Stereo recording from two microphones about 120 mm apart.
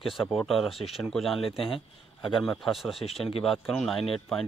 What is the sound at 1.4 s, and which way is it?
Speech, 50° left (ahead or behind).